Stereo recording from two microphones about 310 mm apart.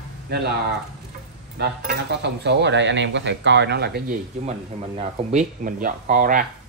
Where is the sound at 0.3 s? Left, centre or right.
Right.